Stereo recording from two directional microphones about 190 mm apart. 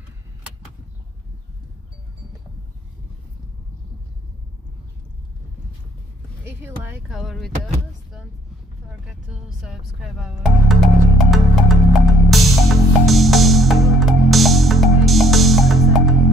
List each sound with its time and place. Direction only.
6.4 s speech: 10° right (ahead or behind)
7.2 s speech: centre (ahead or behind)
9.0 s speech: centre (ahead or behind)